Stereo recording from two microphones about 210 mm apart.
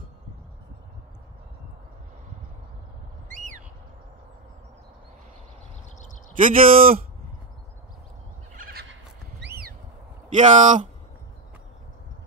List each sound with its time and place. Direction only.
3.3 s bird: 35° right (ahead or behind)
6.4 s speech: 40° right (ahead or behind)
8.5 s neigh: 45° right (ahead or behind)
9.4 s a sound: 50° right (ahead or behind)
10.3 s speech: 35° right (ahead or behind)